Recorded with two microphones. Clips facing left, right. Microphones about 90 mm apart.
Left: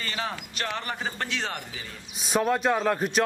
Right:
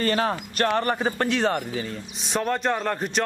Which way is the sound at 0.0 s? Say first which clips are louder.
Right 9 dB; 45° right (ahead or behind).